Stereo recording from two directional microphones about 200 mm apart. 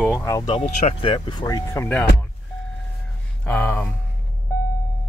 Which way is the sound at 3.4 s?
5° left (ahead or behind).